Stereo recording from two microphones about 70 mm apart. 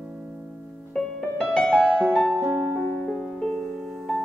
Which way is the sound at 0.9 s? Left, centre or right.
Centre.